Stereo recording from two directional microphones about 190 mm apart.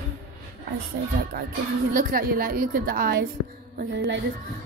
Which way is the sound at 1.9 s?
50° right (ahead or behind).